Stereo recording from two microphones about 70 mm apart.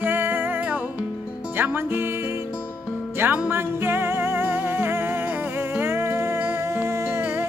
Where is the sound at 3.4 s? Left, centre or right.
Right.